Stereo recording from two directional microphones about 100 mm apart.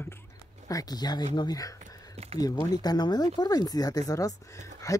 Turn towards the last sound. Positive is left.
turn(degrees=30)  # may be behind; listen again after turning